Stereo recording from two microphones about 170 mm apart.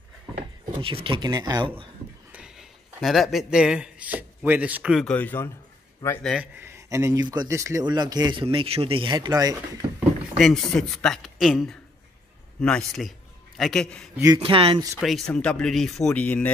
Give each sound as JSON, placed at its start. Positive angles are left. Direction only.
{"t": 0.7, "sound": "speech", "side_deg": -30}
{"t": 2.3, "sound": "speech", "side_deg": -5}
{"t": 5.0, "sound": "speech", "side_deg": 10}
{"t": 6.6, "sound": "speech", "side_deg": -15}
{"t": 9.9, "sound": "speech", "side_deg": 0}
{"t": 14.1, "sound": "speech", "side_deg": -20}
{"t": 14.4, "sound": "speech", "side_deg": -30}
{"t": 15.0, "sound": "speech", "side_deg": 0}